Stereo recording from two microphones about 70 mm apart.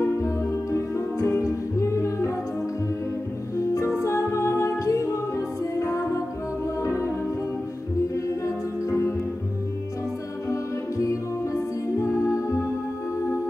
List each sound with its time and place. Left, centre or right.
0.0 s music: left
3.5 s music: left
10.5 s music: left